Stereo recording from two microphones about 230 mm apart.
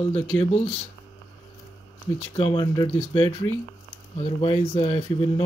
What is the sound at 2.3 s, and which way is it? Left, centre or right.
Mantra, left.